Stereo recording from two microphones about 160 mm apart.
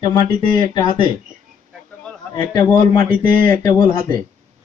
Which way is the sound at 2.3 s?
25° left (ahead or behind).